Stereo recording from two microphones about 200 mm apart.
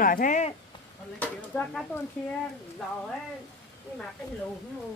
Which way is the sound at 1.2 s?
10° left (ahead or behind).